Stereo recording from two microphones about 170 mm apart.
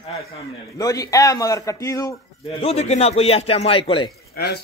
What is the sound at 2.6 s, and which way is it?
A man's voice, 35° left (ahead or behind).